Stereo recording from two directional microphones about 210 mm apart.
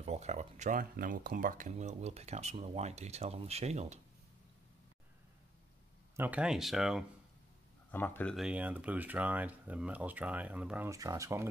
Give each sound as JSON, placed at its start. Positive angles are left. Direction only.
{"t": 0.0, "sound": "speech", "side_deg": -30}
{"t": 6.1, "sound": "speech", "side_deg": -5}
{"t": 7.9, "sound": "speech", "side_deg": 10}
{"t": 8.4, "sound": "speech", "side_deg": -5}